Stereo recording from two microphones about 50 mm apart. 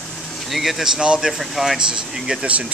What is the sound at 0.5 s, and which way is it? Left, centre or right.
Speech, centre.